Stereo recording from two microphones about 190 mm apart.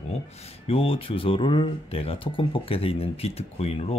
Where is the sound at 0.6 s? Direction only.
30° left (ahead or behind).